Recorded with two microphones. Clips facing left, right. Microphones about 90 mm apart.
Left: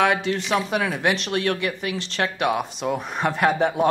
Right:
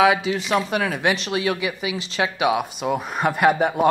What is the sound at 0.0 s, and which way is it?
Speech, 5° right (ahead or behind).